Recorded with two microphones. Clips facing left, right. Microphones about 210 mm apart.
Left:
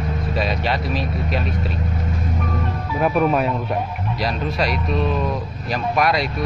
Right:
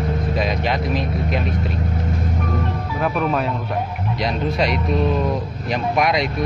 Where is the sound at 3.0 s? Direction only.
15° left (ahead or behind).